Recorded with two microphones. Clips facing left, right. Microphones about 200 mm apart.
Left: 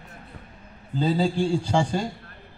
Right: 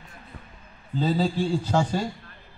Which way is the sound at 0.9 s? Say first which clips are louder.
Left 1 dB; centre (ahead or behind).